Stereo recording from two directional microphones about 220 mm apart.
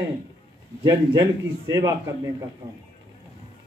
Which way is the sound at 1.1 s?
15° right (ahead or behind).